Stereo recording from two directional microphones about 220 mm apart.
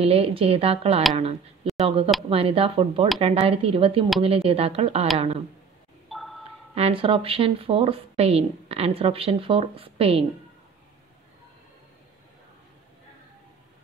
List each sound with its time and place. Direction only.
0.0 s speech: 25° right (ahead or behind)
6.0 s a sound: centre (ahead or behind)
6.7 s speech: 25° right (ahead or behind)